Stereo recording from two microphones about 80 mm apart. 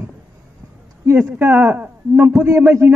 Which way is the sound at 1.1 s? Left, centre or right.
Right.